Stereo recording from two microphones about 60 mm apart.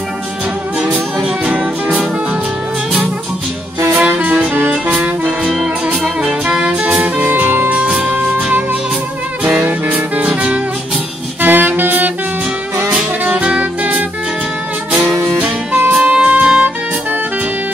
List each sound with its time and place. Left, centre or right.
0.7 s music: right
4.1 s music: right
7.2 s music: right
7.7 s music: right
9.6 s music: right
11.4 s saxophone: right
13.2 s music: centre
15.3 s music: centre